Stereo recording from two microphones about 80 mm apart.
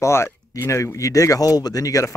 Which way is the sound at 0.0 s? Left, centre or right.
Left.